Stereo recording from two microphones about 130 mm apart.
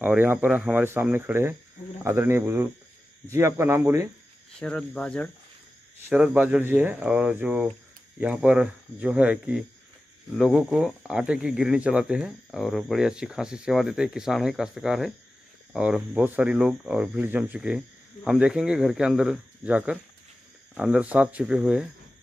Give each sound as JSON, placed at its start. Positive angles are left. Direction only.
{"t": 0.0, "sound": "speech", "side_deg": -15}
{"t": 4.6, "sound": "speech", "side_deg": 5}
{"t": 5.9, "sound": "speech", "side_deg": -15}